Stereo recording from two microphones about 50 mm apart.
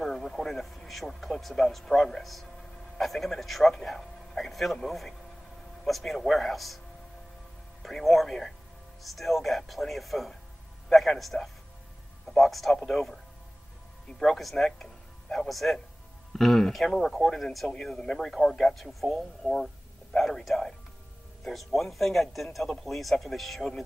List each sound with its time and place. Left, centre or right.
0.0 s speech: centre
7.8 s a man's voice: centre
14.2 s speech: centre
18.9 s speech: centre